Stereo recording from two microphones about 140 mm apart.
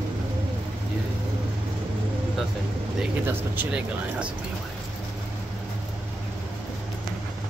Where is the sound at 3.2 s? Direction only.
15° right (ahead or behind).